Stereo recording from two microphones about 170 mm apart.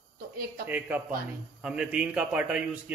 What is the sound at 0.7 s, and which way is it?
A man's voice, 10° right (ahead or behind).